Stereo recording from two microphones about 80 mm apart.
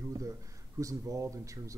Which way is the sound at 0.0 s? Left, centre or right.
Right.